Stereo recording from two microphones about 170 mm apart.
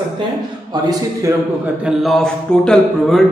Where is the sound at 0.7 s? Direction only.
25° right (ahead or behind).